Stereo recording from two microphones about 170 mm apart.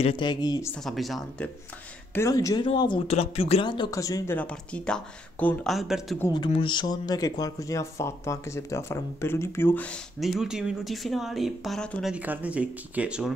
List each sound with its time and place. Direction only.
0.0 s speech: 30° left (ahead or behind)
0.7 s speech: centre (ahead or behind)
2.1 s speech: 20° left (ahead or behind)
3.1 s speech: 35° left (ahead or behind); by 4.4 s 20° left (ahead or behind)
4.4 s speech: 5° left (ahead or behind)
6.3 s speech: 30° left (ahead or behind); by 12.1 s 5° left (ahead or behind)
12.1 s speech: 10° right (ahead or behind)